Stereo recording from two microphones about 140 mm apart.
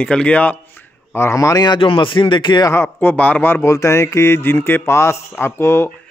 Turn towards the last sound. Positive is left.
turn(degrees=20)  # may be behind; listen again after turning